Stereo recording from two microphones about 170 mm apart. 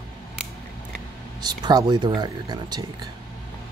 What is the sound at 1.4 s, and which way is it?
Speech, 25° right (ahead or behind).